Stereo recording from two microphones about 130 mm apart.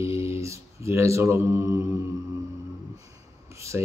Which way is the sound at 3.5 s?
20° right (ahead or behind).